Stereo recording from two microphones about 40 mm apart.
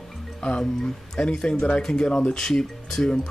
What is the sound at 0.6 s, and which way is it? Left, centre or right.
Speech, centre.